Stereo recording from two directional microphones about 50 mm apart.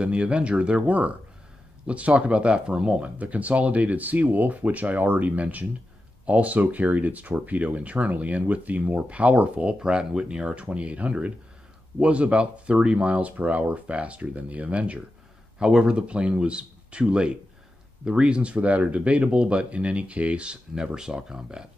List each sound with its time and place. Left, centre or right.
0.0 s speech: right
3.2 s speech: right; by 21.6 s centre